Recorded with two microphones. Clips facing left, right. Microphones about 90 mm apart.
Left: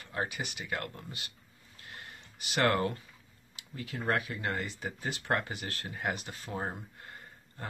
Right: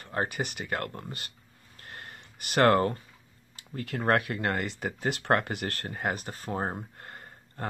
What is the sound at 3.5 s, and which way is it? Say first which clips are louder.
Speech: right 6 dB; 55° right (ahead or behind).